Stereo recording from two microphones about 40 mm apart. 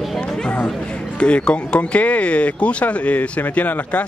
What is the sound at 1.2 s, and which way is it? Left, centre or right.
Speech, left.